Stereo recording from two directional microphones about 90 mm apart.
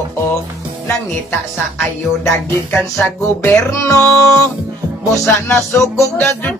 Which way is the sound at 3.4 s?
30° left (ahead or behind).